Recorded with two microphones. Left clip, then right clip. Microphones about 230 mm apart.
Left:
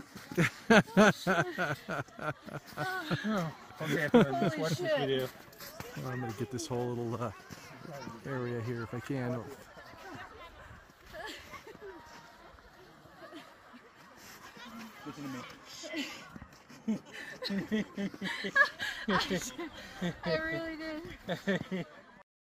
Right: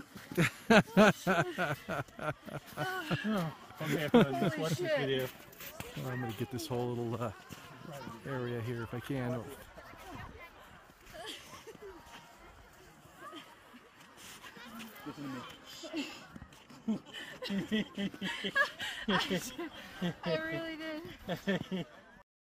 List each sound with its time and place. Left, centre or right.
0.3 s snicker: centre
5.0 s speech: centre
6.0 s snicker: centre
11.1 s a sound: left
15.8 s a sound: left
16.9 s snicker: centre